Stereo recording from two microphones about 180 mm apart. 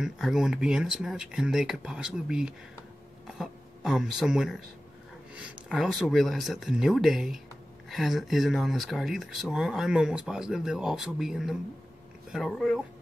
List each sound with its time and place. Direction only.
0.0 s a woman's voice: centre (ahead or behind)